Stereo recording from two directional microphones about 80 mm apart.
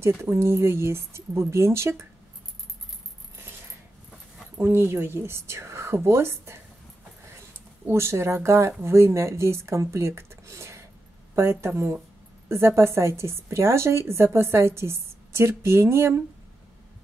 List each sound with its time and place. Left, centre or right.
0.0 s a woman's voice: right
4.6 s a woman's voice: right
7.9 s a woman's voice: right